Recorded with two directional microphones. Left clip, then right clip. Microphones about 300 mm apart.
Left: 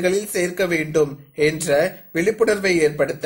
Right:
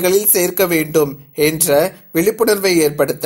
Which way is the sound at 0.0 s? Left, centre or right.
Centre.